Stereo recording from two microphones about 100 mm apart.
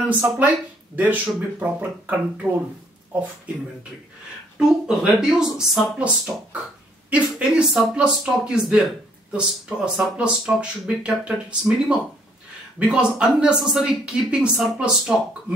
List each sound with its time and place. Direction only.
0.1 s speech: 15° right (ahead or behind)
4.6 s speech: 5° right (ahead or behind)